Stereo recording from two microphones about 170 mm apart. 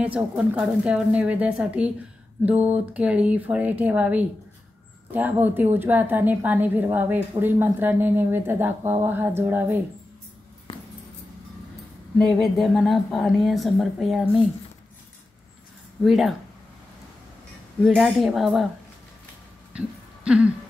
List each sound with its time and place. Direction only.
0.0 s a woman's voice: 5° right (ahead or behind)
12.3 s speech: centre (ahead or behind)
16.0 s speech: centre (ahead or behind)
17.8 s speech: centre (ahead or behind)
20.2 s speech: 5° right (ahead or behind)